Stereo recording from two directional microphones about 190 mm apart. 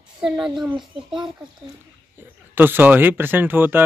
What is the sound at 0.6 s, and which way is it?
Speech, centre (ahead or behind).